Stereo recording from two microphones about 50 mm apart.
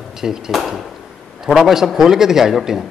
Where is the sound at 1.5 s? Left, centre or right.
Centre.